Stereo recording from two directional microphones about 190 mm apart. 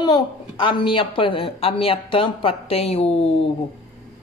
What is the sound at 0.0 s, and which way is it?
A woman's voice, 25° left (ahead or behind).